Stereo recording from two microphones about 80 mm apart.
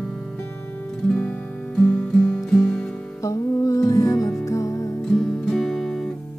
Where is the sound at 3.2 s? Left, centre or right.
Left.